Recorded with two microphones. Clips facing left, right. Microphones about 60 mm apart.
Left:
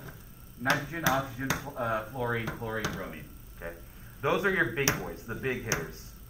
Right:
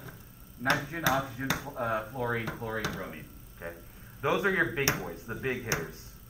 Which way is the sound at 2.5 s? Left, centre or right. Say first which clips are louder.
Even; left.